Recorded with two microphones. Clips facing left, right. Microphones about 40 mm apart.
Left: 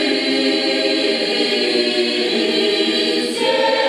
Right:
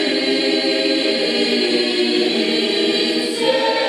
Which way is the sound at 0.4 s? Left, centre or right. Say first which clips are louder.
Left 1 dB; centre.